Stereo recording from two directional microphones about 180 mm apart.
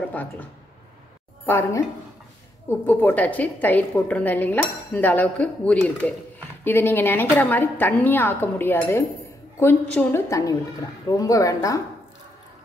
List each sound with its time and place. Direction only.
0.1 s a woman's voice: 10° left (ahead or behind)